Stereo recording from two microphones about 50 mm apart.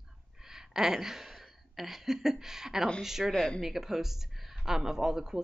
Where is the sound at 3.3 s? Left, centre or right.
Centre.